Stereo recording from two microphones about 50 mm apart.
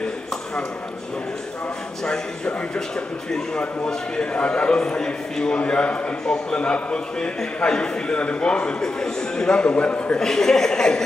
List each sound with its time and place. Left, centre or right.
3.3 s a man's voice: centre
10.1 s speech: centre